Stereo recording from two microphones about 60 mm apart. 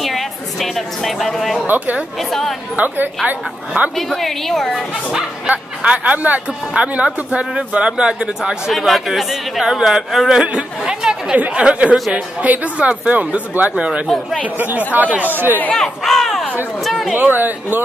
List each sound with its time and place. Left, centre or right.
0.0 s a woman's voice: centre
1.7 s speech: right
2.1 s speech: centre
2.7 s speech: right
3.9 s speech: centre
5.5 s speech: right
8.7 s speech: centre
10.8 s chatter: centre
11.3 s speech: right
14.0 s speech: centre
14.6 s a man's voice: right
15.7 s speech: centre
16.8 s a sound: centre
17.1 s a man's voice: right